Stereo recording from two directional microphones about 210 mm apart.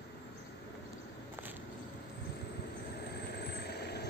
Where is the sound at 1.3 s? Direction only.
10° right (ahead or behind).